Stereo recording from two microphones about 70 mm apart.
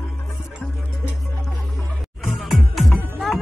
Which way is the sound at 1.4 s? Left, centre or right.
Centre.